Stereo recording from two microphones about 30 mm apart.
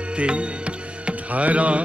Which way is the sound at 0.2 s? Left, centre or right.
Right.